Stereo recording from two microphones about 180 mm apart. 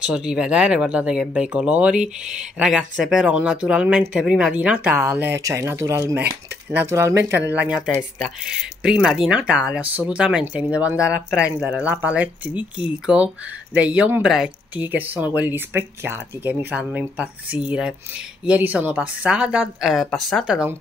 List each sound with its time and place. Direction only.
0.0 s speech: 5° right (ahead or behind)